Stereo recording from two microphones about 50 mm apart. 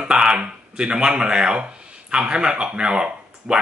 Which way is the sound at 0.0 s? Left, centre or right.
Centre.